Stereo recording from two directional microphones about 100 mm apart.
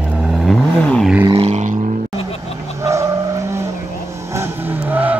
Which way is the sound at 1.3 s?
90° right.